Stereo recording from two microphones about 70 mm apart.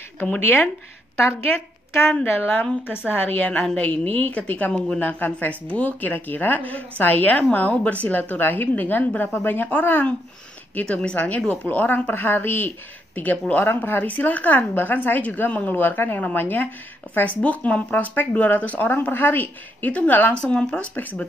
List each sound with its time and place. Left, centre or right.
0.2 s a woman's voice: left
3.5 s a woman's voice: centre
20.5 s a woman's voice: centre